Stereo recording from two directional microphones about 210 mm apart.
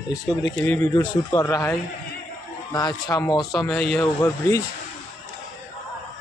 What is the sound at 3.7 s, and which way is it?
Speech, 5° left (ahead or behind).